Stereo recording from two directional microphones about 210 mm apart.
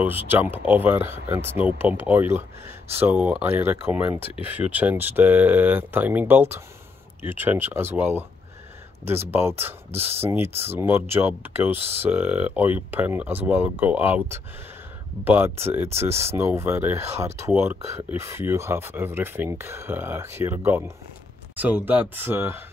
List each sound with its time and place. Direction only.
0.0 s speech: 10° right (ahead or behind)
9.9 s speech: 30° right (ahead or behind)
10.2 s speech: 10° right (ahead or behind)
10.5 s speech: 30° right (ahead or behind)
10.8 s speech: 10° right (ahead or behind)